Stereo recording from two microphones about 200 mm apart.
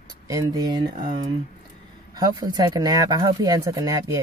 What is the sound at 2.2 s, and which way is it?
Speech, 20° right (ahead or behind).